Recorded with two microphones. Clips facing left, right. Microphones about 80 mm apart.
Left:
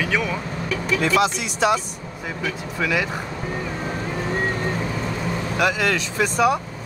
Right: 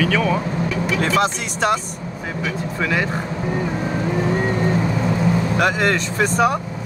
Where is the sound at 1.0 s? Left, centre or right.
Right.